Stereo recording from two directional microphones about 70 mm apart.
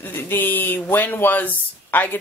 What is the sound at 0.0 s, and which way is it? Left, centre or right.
Speech, left.